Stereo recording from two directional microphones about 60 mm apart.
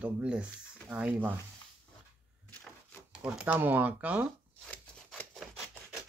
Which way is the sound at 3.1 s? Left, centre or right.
Centre.